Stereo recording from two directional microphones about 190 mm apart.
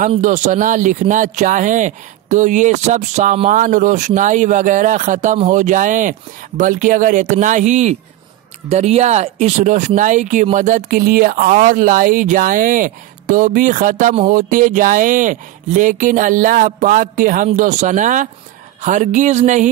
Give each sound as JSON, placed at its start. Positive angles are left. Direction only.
{"t": 0.2, "sound": "speech", "side_deg": -40}